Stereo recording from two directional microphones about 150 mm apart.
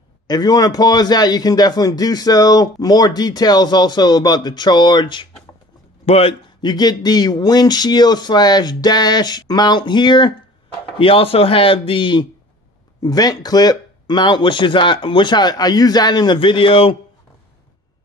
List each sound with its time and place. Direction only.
0.3 s a man's voice: 25° left (ahead or behind)
6.0 s a man's voice: 40° left (ahead or behind)
6.6 s a man's voice: 25° left (ahead or behind)